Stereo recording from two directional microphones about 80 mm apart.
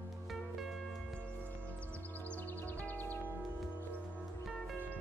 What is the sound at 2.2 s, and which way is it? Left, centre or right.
Music, left.